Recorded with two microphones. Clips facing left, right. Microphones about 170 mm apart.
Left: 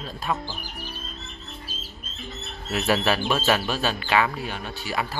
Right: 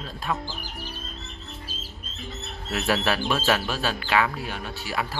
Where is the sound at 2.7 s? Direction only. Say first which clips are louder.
Left 2 dB; centre (ahead or behind).